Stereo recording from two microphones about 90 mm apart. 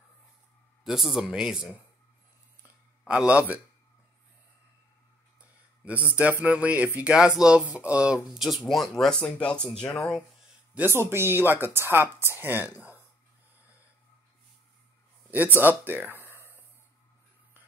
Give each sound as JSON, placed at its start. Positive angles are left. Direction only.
{"t": 0.8, "sound": "speech", "side_deg": -5}
{"t": 3.1, "sound": "speech", "side_deg": -15}
{"t": 5.4, "sound": "a sound", "side_deg": -15}
{"t": 6.1, "sound": "speech", "side_deg": -15}
{"t": 8.3, "sound": "speech", "side_deg": 0}
{"t": 9.2, "sound": "speech", "side_deg": 15}
{"t": 10.7, "sound": "speech", "side_deg": -20}
{"t": 12.7, "sound": "a sound", "side_deg": 30}
{"t": 15.3, "sound": "speech", "side_deg": -20}
{"t": 16.3, "sound": "a sound", "side_deg": -25}